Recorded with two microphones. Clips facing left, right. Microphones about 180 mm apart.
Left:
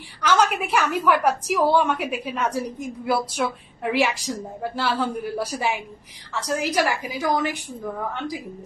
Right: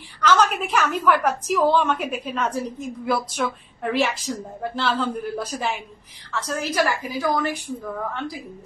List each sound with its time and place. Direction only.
0.2 s a woman's voice: 10° left (ahead or behind)